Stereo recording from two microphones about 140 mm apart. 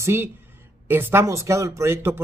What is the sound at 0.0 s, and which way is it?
Speech, 15° right (ahead or behind).